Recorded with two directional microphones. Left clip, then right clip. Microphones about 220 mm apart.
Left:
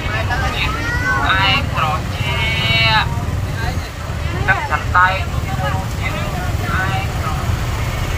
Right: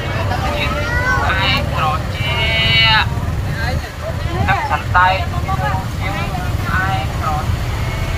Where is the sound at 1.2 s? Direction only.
25° left (ahead or behind).